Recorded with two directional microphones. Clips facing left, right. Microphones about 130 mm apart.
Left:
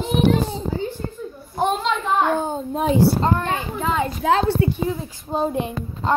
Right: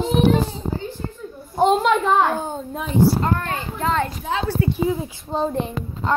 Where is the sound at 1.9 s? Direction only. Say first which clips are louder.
Right 5 dB; 55° right (ahead or behind).